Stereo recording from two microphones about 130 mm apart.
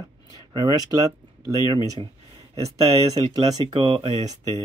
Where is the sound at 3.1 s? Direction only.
30° right (ahead or behind); by 4.2 s 45° right (ahead or behind).